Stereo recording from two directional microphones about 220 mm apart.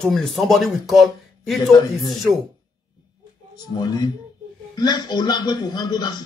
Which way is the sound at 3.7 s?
20° left (ahead or behind).